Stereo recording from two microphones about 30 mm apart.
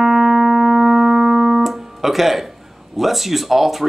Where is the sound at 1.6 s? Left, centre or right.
Centre.